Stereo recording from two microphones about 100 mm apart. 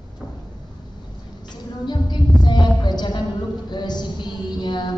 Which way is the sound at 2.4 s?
45° left (ahead or behind).